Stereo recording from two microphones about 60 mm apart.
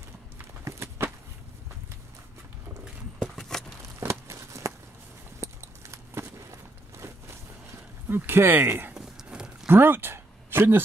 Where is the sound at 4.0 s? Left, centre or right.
Right.